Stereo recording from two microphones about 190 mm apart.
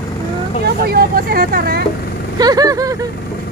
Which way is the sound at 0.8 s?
55° right (ahead or behind).